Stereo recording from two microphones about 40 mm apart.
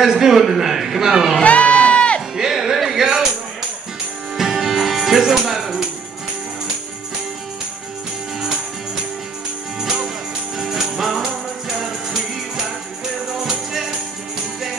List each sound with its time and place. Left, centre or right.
0.2 s a sound: centre
1.4 s music: left
2.3 s music: centre
4.4 s music: centre
10.6 s music: centre